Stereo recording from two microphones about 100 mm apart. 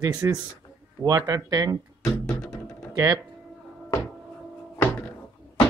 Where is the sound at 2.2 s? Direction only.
5° left (ahead or behind).